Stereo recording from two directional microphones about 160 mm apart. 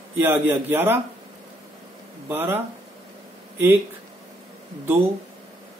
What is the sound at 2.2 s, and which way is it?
Speech, 15° right (ahead or behind).